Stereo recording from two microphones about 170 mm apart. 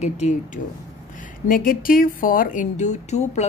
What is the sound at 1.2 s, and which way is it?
A woman's voice, 55° left (ahead or behind).